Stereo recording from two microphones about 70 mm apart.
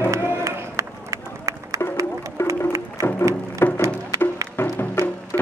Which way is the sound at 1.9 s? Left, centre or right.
Right.